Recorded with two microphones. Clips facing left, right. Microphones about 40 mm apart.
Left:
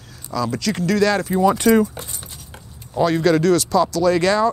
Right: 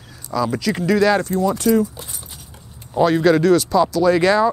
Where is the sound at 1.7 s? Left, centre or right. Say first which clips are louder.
Left 1 dB; left.